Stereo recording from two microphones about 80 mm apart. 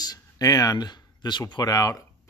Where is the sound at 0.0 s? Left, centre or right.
Left.